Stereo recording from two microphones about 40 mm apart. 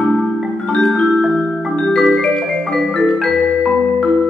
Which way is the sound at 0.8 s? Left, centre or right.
Centre.